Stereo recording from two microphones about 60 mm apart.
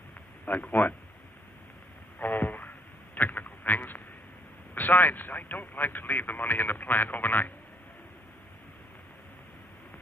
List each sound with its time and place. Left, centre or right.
0.5 s speech: left
2.1 s a sound: left
4.7 s speech: left